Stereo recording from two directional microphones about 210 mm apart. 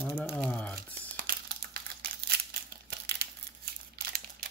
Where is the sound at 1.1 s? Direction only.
45° right (ahead or behind).